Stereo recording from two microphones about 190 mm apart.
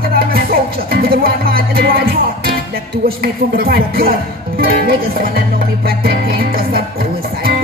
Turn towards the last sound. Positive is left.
turn(degrees=-50)  # may be behind; listen again after turning